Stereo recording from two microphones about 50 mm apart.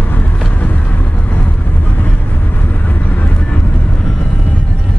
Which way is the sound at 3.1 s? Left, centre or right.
Left.